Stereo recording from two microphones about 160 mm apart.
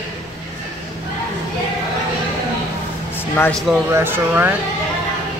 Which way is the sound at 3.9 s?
15° right (ahead or behind).